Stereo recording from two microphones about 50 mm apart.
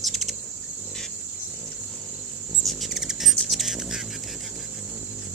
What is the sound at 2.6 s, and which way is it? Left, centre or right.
Rodents, centre.